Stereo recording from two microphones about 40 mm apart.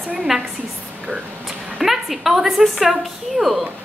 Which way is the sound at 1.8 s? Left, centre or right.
Centre.